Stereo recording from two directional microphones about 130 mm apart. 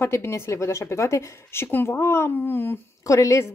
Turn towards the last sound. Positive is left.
turn(degrees=20)  # may be behind; listen again after turning